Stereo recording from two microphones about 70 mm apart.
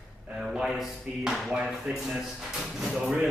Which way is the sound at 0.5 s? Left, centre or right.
Centre.